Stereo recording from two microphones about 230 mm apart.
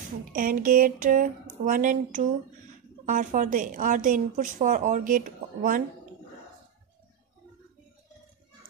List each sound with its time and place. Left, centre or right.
0.3 s a woman's voice: right